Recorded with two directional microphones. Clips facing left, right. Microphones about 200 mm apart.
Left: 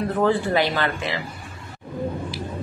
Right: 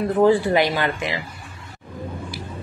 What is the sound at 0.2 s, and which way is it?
A woman's voice, 15° right (ahead or behind).